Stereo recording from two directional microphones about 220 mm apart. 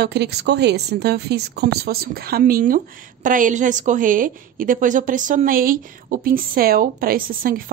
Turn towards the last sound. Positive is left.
turn(degrees=-40)  # may be behind; listen again after turning